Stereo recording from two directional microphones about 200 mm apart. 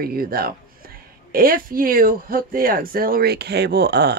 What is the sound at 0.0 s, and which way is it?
Speech, 50° right (ahead or behind).